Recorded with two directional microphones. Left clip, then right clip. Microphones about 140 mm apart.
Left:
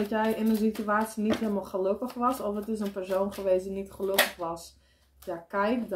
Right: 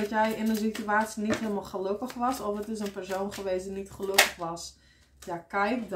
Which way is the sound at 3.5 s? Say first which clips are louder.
Left 5 dB; 25° right (ahead or behind).